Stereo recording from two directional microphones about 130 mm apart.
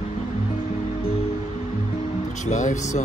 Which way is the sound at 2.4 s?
70° left (ahead or behind).